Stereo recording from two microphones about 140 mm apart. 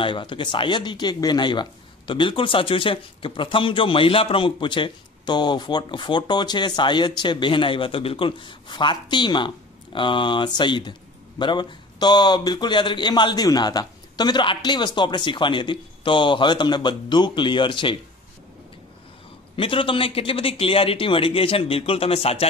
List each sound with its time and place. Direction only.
0.0 s speech: 35° left (ahead or behind)
19.5 s speech: 40° left (ahead or behind)